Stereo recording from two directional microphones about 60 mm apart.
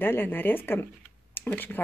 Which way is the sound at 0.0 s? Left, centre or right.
Left.